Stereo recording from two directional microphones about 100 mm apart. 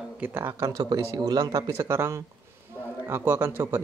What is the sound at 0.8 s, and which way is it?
Speech, 40° right (ahead or behind).